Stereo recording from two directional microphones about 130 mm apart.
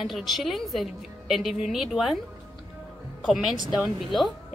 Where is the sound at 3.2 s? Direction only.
5° right (ahead or behind).